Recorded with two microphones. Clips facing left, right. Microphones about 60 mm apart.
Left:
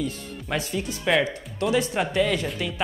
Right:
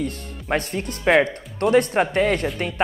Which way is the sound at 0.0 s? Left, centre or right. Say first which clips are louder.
Right 2 dB; right.